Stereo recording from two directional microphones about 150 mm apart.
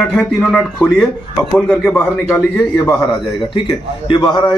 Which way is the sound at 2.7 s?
25° left (ahead or behind).